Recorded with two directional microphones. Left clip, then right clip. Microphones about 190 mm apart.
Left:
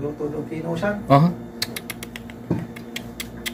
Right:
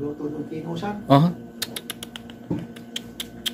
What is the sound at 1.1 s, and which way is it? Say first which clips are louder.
Computer keyboard: even; 15° right (ahead or behind).